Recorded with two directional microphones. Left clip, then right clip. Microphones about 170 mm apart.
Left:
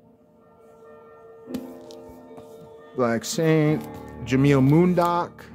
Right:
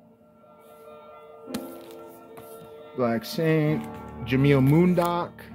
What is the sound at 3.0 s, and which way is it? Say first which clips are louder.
Music: left 3 dB; 25° left (ahead or behind).